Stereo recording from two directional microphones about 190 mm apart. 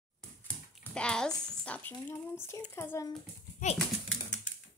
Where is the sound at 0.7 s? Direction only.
5° left (ahead or behind).